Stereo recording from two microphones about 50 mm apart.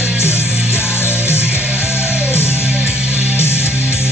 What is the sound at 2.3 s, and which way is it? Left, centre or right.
Music, left.